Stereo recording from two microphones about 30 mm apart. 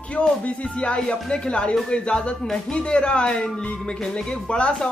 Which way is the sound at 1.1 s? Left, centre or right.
Left.